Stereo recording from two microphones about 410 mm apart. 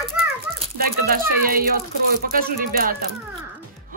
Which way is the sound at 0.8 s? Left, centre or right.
Right.